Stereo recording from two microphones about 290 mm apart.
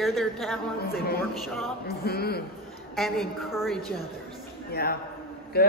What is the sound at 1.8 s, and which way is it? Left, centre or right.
Speech, left.